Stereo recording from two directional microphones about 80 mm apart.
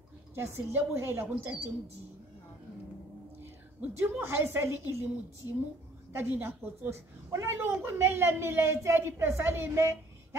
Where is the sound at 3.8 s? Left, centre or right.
Centre.